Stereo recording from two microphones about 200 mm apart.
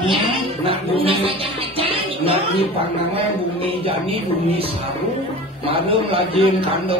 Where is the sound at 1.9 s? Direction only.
30° right (ahead or behind).